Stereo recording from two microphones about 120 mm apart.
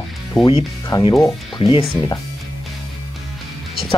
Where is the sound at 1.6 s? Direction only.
50° left (ahead or behind).